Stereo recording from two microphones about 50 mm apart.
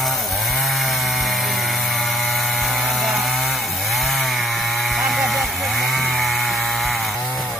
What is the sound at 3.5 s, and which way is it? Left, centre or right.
Chainsaw, centre.